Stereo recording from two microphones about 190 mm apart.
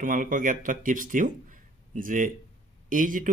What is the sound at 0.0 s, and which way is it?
A man's voice, 45° right (ahead or behind).